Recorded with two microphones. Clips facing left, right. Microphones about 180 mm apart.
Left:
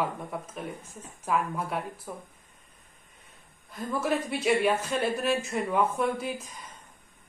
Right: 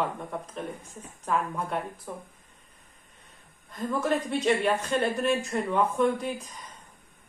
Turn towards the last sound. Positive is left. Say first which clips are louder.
# right 3 dB
turn(degrees=5)  # may be behind; listen again after turning